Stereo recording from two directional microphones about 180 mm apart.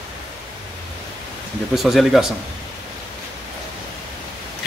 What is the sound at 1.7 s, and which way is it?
Speech, centre (ahead or behind).